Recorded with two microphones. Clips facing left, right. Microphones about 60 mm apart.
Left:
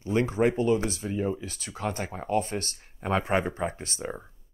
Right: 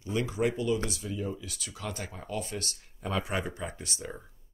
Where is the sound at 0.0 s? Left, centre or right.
Left.